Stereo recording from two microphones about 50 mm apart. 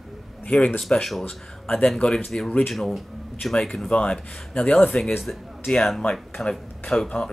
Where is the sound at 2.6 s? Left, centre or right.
Centre.